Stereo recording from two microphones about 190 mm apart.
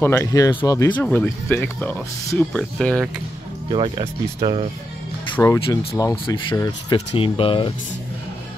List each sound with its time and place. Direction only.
0.0 s speech: 15° left (ahead or behind)
3.6 s speech: 25° right (ahead or behind)
5.3 s speech: 15° left (ahead or behind)